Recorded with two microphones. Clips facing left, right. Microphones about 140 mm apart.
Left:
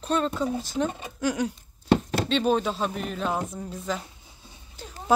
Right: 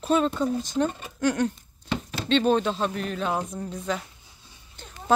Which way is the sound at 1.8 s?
55° left (ahead or behind).